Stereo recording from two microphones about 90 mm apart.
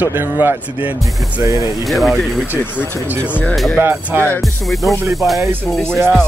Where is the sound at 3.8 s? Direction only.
25° right (ahead or behind).